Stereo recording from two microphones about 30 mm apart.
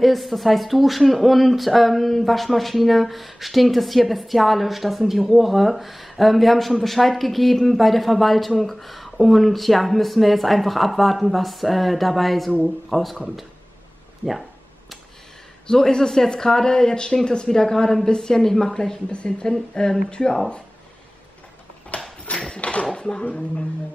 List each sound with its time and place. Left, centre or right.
0.0 s speech: centre
15.6 s speech: left
19.0 s speech: left
21.9 s a sound: left
22.9 s dishes: left